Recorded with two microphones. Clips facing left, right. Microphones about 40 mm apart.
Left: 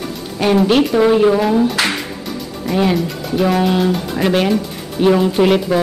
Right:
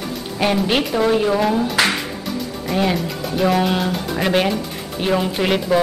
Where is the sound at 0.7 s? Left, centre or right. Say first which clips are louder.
Left 6 dB; centre.